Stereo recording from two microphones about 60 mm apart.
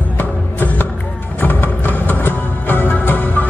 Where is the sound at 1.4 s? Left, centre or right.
Left.